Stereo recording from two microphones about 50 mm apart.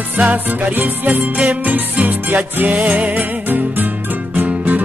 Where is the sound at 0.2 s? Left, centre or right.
Right.